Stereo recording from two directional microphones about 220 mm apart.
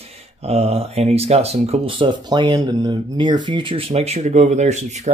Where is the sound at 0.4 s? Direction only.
25° right (ahead or behind).